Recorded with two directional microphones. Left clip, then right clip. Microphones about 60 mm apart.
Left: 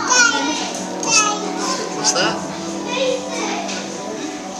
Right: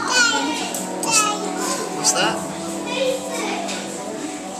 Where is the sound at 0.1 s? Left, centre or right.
Centre.